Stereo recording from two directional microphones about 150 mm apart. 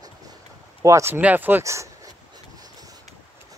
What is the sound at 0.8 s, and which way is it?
Speech, 20° right (ahead or behind).